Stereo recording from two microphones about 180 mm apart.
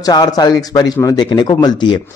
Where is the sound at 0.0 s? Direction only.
20° left (ahead or behind).